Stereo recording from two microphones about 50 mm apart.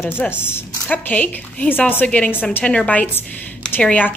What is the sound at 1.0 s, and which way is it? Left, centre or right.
Speech, left.